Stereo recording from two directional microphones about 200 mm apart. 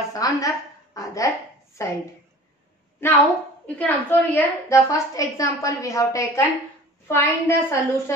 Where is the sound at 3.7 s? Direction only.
10° left (ahead or behind).